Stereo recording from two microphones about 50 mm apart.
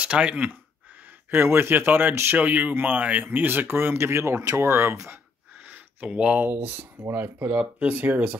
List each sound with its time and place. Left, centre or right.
0.0 s speech: right
1.4 s speech: right
3.3 s speech: right
6.0 s speech: centre
6.5 s speech: right
7.1 s speech: right
7.8 s speech: right